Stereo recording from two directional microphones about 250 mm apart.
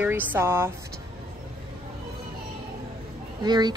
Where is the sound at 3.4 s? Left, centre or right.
Centre.